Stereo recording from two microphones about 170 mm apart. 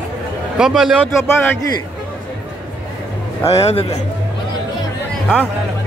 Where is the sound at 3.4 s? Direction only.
35° left (ahead or behind).